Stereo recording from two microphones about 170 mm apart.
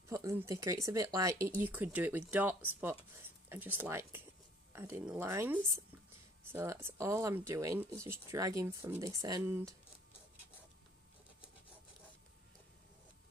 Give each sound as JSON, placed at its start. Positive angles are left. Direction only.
{"t": 0.1, "sound": "speech", "side_deg": -15}